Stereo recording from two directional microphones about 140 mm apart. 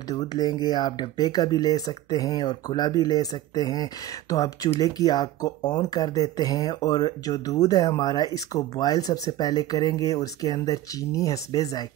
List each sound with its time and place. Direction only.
0.1 s speech: 30° left (ahead or behind)